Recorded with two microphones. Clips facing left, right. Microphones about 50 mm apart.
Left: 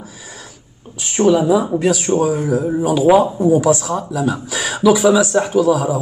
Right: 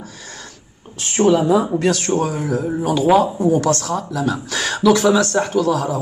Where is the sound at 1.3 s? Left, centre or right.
Centre.